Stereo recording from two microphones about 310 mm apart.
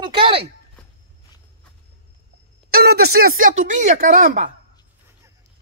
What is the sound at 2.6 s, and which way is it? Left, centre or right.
Speech, right.